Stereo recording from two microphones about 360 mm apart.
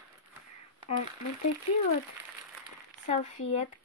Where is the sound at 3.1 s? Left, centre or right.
Centre.